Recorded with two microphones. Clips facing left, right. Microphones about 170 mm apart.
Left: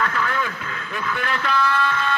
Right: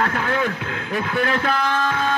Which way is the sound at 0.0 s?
45° right (ahead or behind).